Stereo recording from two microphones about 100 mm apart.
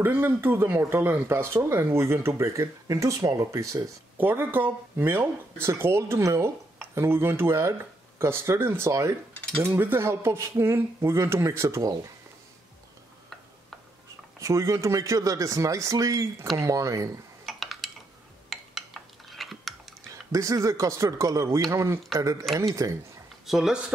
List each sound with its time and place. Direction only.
0.0 s speech: 20° right (ahead or behind)
4.2 s speech: 20° right (ahead or behind)
14.4 s speech: 30° right (ahead or behind)
17.5 s a sound: centre (ahead or behind)
20.2 s speech: 35° right (ahead or behind)
23.4 s speech: 5° right (ahead or behind)